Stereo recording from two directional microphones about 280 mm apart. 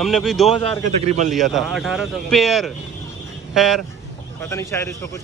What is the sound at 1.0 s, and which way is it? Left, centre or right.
Speech, right.